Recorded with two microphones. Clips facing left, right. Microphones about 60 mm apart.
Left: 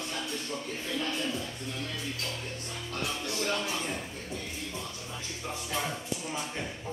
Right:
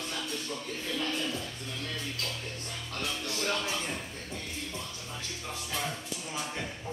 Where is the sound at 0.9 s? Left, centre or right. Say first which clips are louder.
Even; left.